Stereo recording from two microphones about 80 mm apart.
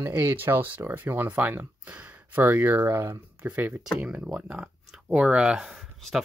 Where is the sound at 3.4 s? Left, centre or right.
Centre.